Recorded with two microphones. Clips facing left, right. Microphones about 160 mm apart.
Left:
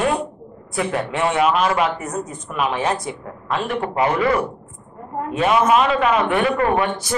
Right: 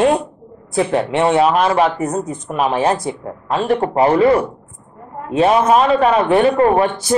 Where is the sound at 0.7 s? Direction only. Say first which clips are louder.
Right 6 dB; 30° right (ahead or behind).